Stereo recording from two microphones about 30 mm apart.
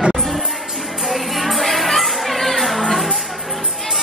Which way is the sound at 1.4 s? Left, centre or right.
Centre.